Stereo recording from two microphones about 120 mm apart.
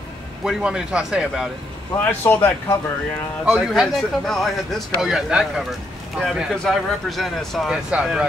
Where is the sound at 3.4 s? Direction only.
Centre (ahead or behind).